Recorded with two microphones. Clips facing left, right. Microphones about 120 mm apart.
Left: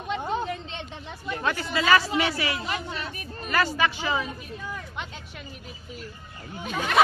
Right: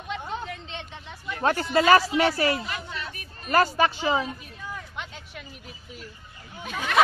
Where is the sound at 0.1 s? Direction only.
35° left (ahead or behind).